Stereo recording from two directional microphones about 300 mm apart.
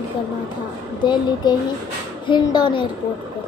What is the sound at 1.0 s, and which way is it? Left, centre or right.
A child's voice, centre.